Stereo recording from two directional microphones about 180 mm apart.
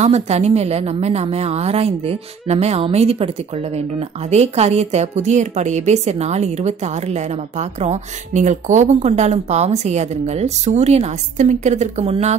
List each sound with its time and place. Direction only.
0.0 s a woman's voice: 35° right (ahead or behind)
4.3 s a woman's voice: 35° right (ahead or behind)